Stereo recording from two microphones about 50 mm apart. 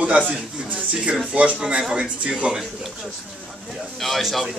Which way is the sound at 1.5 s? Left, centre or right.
Centre.